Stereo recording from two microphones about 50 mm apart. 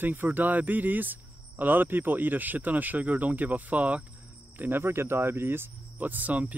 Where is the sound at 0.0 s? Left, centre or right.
Right.